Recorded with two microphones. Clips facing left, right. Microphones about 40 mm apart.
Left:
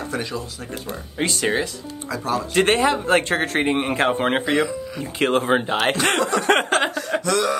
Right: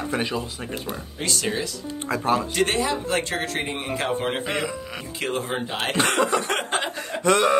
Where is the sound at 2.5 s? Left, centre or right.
Left.